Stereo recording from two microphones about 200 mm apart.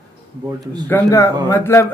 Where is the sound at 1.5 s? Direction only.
15° left (ahead or behind).